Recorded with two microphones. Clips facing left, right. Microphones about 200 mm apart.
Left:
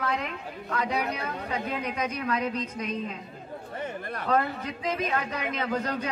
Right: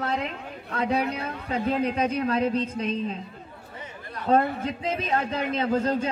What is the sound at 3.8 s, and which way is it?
Chatter, 55° left (ahead or behind).